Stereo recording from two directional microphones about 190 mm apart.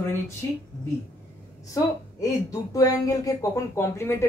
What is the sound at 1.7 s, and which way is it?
Speech, 15° left (ahead or behind).